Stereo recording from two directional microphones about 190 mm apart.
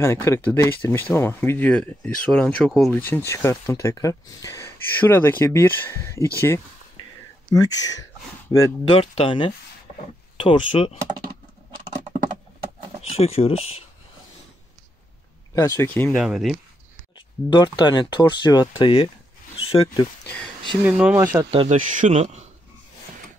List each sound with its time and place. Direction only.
0.0 s speech: 15° left (ahead or behind)
7.5 s speech: 20° left (ahead or behind)
8.9 s speech: 30° left (ahead or behind)
13.1 s speech: 30° left (ahead or behind)
15.5 s speech: 20° left (ahead or behind)
16.2 s speech: centre (ahead or behind)
17.5 s speech: 25° left (ahead or behind)
20.8 s speech: 5° right (ahead or behind)
21.5 s speech: 35° right (ahead or behind)